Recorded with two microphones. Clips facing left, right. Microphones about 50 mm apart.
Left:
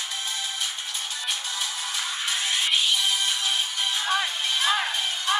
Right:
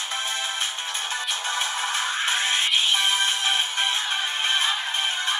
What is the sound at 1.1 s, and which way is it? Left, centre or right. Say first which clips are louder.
Music: right 4 dB; right.